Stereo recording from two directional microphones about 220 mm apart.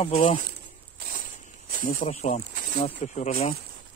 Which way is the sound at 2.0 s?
30° left (ahead or behind).